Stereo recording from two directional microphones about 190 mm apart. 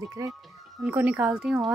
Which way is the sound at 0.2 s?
20° right (ahead or behind).